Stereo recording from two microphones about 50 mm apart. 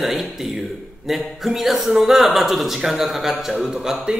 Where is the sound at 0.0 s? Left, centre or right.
Centre.